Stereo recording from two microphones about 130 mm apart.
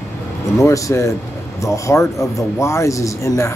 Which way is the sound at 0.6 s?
25° left (ahead or behind).